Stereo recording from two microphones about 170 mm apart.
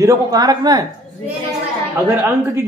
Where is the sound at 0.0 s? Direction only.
20° right (ahead or behind).